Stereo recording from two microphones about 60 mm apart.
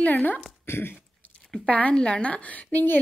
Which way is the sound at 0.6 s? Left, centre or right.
Left.